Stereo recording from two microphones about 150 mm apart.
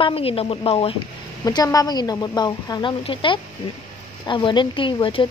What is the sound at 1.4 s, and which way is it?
A woman's voice, 25° left (ahead or behind).